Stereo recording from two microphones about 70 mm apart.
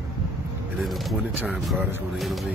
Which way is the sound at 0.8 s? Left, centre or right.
Centre.